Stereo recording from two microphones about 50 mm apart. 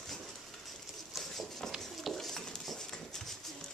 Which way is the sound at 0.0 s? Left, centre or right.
Centre.